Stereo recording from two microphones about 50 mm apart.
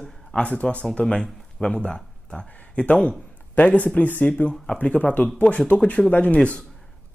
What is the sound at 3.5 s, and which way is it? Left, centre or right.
Speech, left.